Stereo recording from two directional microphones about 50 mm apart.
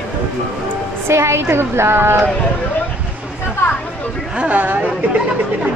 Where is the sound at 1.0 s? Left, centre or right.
Right.